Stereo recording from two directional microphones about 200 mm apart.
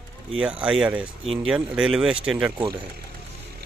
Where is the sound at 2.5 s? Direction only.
25° right (ahead or behind).